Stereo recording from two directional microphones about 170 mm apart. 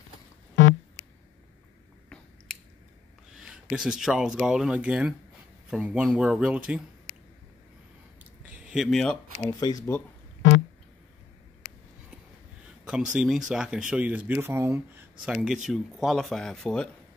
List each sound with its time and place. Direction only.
2.5 s chewing: centre (ahead or behind)
3.3 s speech: 5° right (ahead or behind)
8.5 s speech: 5° right (ahead or behind)
9.4 s speech: 20° left (ahead or behind)
12.8 s speech: 5° right (ahead or behind)